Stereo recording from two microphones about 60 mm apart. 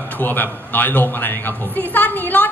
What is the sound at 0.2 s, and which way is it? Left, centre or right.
A man's voice, left.